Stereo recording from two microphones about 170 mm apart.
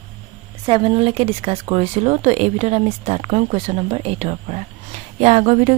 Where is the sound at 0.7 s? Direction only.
30° right (ahead or behind).